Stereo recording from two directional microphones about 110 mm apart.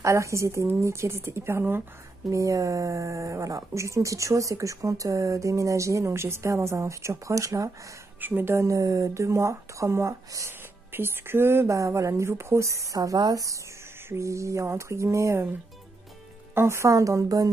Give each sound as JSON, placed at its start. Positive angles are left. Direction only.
{"t": 0.0, "sound": "speech", "side_deg": -30}
{"t": 8.2, "sound": "speech", "side_deg": -15}
{"t": 16.5, "sound": "speech", "side_deg": -25}